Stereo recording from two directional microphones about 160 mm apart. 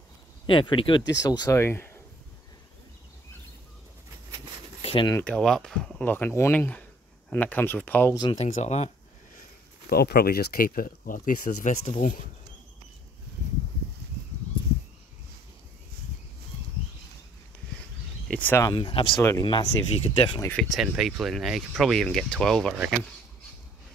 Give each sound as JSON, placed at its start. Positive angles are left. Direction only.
{"t": 0.5, "sound": "speech", "side_deg": 30}
{"t": 4.8, "sound": "a sound", "side_deg": 30}
{"t": 5.1, "sound": "speech", "side_deg": 10}
{"t": 8.4, "sound": "speech", "side_deg": 45}
{"t": 9.8, "sound": "speech", "side_deg": 80}
{"t": 18.3, "sound": "speech", "side_deg": 10}
{"t": 18.7, "sound": "speech", "side_deg": 35}
{"t": 20.5, "sound": "speech", "side_deg": 0}